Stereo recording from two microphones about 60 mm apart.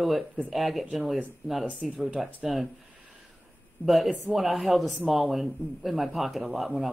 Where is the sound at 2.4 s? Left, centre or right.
Centre.